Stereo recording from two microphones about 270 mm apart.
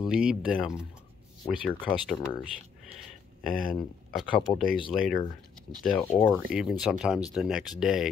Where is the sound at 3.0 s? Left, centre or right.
Centre.